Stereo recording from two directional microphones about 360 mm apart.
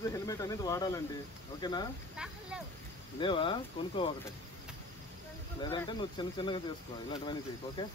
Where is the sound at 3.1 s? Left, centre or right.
Centre.